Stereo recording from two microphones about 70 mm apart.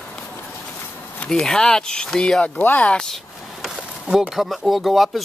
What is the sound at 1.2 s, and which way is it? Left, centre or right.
Speech, centre.